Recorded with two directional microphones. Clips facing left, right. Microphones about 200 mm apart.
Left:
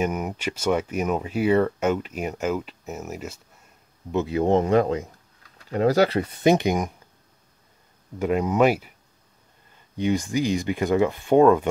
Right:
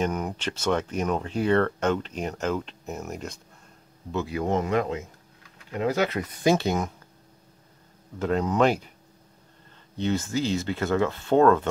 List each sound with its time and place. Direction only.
0.0 s speech: 10° left (ahead or behind)
4.1 s speech: 20° left (ahead or behind)
8.2 s speech: 10° left (ahead or behind)
9.9 s speech: 10° left (ahead or behind)